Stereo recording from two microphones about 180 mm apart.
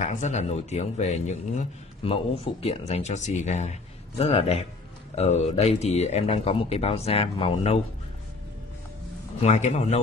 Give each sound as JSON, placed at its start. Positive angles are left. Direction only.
{"t": 0.0, "sound": "speech", "side_deg": 40}
{"t": 9.4, "sound": "speech", "side_deg": 35}